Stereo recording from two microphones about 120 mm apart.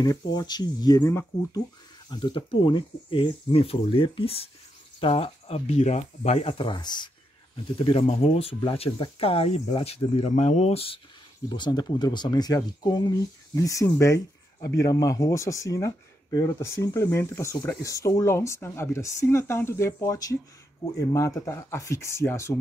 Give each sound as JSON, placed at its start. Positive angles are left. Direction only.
{"t": 0.0, "sound": "speech", "side_deg": 35}
{"t": 2.0, "sound": "speech", "side_deg": 40}
{"t": 6.6, "sound": "speech", "side_deg": 40}
{"t": 7.7, "sound": "speech", "side_deg": 55}
{"t": 10.3, "sound": "speech", "side_deg": 70}
{"t": 11.4, "sound": "speech", "side_deg": 35}
{"t": 13.6, "sound": "speech", "side_deg": 25}